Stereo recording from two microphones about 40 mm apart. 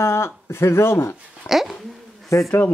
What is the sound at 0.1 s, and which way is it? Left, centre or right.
Speech, left.